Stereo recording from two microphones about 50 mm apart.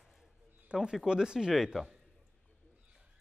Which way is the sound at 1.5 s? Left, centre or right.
Centre.